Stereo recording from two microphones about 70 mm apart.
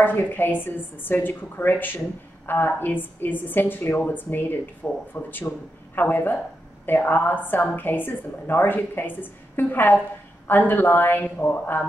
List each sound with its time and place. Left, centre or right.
0.0 s a woman's voice: left